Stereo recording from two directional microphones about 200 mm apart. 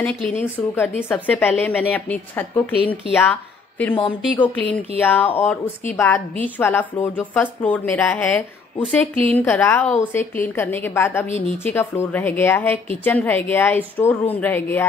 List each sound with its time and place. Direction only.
0.0 s speech: 10° left (ahead or behind)
4.4 s speech: 10° left (ahead or behind)